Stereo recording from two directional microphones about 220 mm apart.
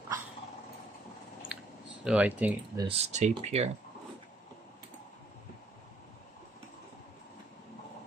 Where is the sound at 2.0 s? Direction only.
5° right (ahead or behind).